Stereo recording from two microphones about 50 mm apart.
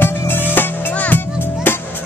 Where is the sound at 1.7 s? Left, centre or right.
Left.